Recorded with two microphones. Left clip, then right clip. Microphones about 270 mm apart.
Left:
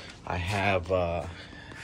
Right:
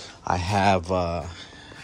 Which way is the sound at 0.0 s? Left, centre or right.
Centre.